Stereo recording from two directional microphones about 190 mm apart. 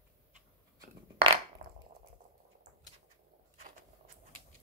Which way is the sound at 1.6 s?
40° right (ahead or behind).